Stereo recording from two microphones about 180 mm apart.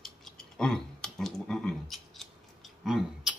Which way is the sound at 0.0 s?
Centre (ahead or behind).